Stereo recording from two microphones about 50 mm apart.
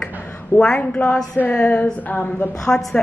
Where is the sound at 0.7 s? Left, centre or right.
Left.